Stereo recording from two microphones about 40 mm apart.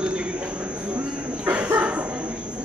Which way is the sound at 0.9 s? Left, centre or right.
Right.